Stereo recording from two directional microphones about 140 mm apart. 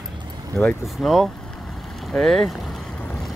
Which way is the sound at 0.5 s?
Centre (ahead or behind).